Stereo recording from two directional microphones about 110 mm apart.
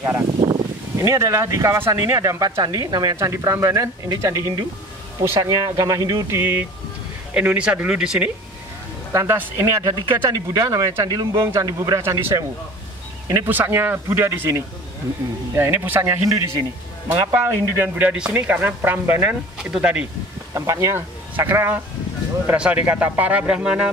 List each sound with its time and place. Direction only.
1.0 s speech: 30° right (ahead or behind)
5.4 s speech: 35° right (ahead or behind)
6.2 s a man's voice: 20° right (ahead or behind)
9.1 s speech: 25° right (ahead or behind)
9.8 s speech: 40° right (ahead or behind)
12.0 s speech: 20° right (ahead or behind)
19.6 s a man's voice: 10° right (ahead or behind)
20.5 s a man's voice: 30° right (ahead or behind); by 23.9 s 10° right (ahead or behind)